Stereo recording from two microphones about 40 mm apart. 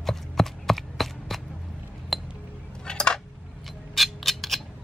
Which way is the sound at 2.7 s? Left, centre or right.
Left.